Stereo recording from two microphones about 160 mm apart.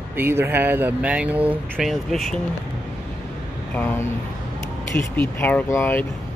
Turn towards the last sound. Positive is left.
turn(degrees=15)  # may be behind; listen again after turning